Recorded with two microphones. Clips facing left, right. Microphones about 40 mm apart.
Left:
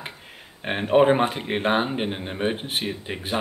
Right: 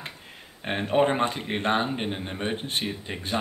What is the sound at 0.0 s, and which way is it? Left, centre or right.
Speech, centre.